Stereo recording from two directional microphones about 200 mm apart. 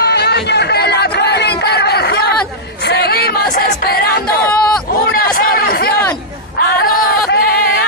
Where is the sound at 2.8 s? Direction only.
55° left (ahead or behind).